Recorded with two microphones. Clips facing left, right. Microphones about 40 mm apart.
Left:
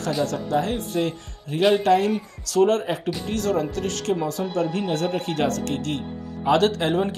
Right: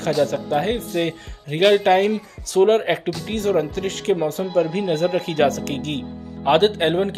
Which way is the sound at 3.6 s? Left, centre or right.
Right.